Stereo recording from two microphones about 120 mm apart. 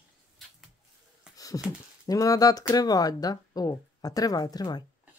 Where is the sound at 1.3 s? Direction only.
30° left (ahead or behind).